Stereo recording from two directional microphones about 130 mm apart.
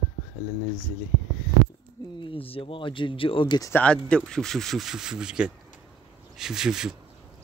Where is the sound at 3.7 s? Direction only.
10° left (ahead or behind).